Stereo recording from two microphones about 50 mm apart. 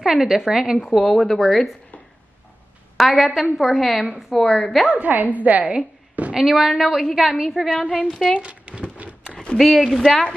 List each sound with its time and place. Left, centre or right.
0.0 s a woman's voice: centre
1.1 s a woman's voice: centre
3.0 s a woman's voice: centre
4.9 s a woman's voice: right
6.3 s a woman's voice: centre
7.9 s a woman's voice: centre
8.3 s speech: right
9.3 s a sound: left
9.6 s a woman's voice: centre